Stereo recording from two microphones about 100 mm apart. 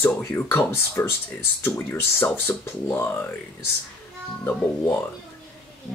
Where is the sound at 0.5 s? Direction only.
20° left (ahead or behind).